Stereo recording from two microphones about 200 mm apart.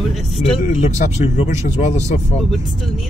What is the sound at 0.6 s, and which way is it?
Speech, 40° left (ahead or behind).